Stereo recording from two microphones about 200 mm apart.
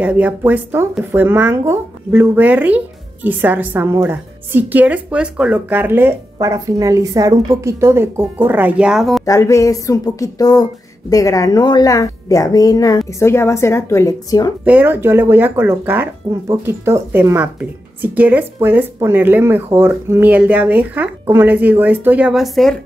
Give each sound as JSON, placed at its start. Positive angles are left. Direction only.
{"t": 0.0, "sound": "speech", "side_deg": -5}
{"t": 9.2, "sound": "a sound", "side_deg": 15}
{"t": 14.6, "sound": "speech", "side_deg": -5}